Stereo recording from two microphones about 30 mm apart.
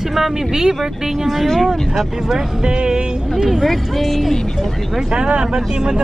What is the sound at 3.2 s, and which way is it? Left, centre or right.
Speech, centre.